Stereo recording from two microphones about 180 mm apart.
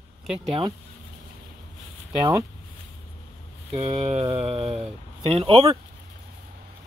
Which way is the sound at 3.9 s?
35° right (ahead or behind).